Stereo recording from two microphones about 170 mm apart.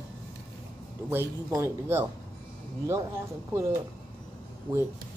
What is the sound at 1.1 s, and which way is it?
Speech, 15° right (ahead or behind).